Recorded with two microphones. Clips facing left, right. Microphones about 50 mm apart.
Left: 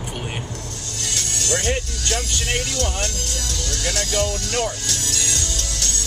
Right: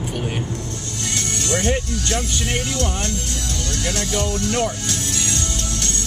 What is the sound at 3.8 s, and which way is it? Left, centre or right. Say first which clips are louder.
Speech: left 1 dB; centre.